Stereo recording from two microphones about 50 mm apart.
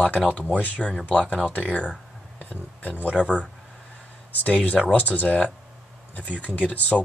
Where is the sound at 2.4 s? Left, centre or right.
Left.